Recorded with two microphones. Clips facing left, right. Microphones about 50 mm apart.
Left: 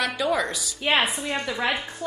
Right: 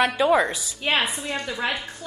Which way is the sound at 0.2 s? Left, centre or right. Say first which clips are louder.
Right 5 dB; right.